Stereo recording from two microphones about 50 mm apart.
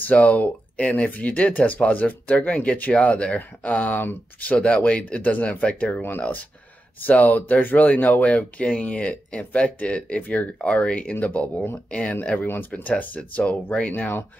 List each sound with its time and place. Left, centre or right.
0.0 s speech: left
10.6 s speech: left
12.4 s speech: left